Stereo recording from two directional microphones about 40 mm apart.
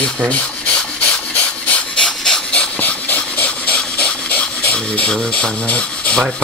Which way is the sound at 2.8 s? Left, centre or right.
Left.